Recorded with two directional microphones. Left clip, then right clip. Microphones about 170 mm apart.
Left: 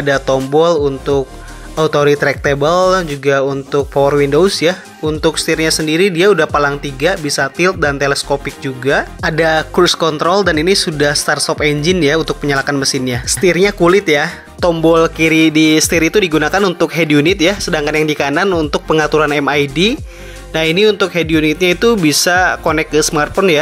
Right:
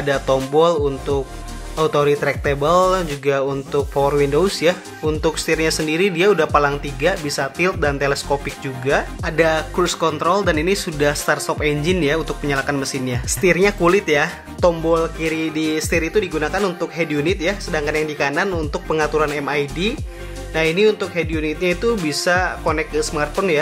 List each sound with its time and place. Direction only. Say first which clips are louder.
0.0 s speech: left 5 dB; 25° left (ahead or behind)
14.6 s speech: left 6 dB; 40° left (ahead or behind)